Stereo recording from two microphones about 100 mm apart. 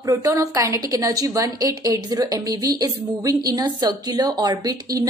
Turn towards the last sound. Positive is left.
turn(degrees=-40)  # may be behind; listen again after turning